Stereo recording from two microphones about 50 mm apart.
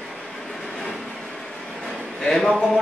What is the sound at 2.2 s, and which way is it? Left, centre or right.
Speech, centre.